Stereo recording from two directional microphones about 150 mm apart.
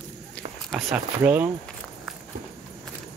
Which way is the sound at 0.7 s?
Centre (ahead or behind).